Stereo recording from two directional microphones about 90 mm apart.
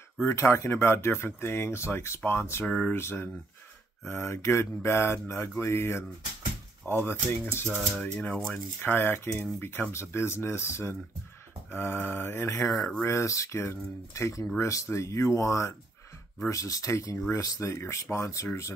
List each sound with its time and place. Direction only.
0.2 s speech: 30° left (ahead or behind)
2.6 s speech: 10° left (ahead or behind)
2.9 s speech: 25° left (ahead or behind)
7.6 s speech: 5° left (ahead or behind)
8.5 s speech: 20° left (ahead or behind)
12.6 s speech: centre (ahead or behind)
13.0 s speech: 35° left (ahead or behind)